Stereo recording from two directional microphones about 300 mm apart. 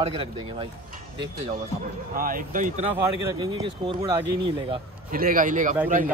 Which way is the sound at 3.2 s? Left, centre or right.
Centre.